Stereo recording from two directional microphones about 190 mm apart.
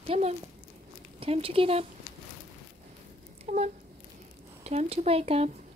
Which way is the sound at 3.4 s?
35° right (ahead or behind).